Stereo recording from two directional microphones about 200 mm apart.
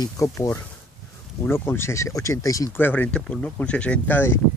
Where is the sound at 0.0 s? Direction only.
15° left (ahead or behind).